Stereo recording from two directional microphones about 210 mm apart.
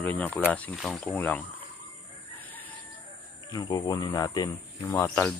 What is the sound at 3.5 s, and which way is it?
Speech, 20° left (ahead or behind).